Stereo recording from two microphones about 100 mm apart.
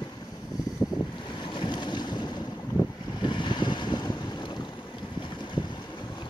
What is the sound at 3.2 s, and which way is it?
Boat, 50° left (ahead or behind).